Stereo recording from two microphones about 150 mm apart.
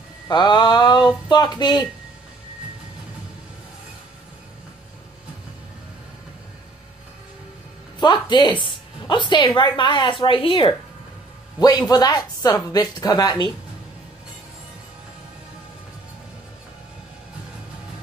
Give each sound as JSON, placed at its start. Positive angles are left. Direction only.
{"t": 0.3, "sound": "a woman's voice", "side_deg": 30}
{"t": 8.0, "sound": "a woman's voice", "side_deg": 30}
{"t": 11.9, "sound": "a woman's voice", "side_deg": 25}